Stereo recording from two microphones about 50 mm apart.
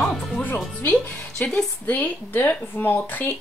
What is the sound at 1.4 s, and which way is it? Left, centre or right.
Speech, left.